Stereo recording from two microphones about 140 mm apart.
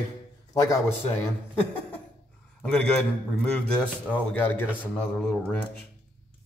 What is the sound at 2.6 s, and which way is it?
A man's voice, 5° left (ahead or behind).